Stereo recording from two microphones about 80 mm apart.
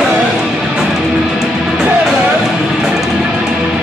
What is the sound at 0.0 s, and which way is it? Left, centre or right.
Music, centre.